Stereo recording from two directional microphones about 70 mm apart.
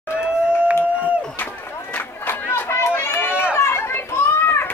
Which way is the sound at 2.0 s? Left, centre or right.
Left.